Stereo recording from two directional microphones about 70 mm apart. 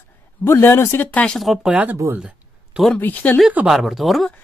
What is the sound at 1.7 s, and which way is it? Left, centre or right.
Speech, right.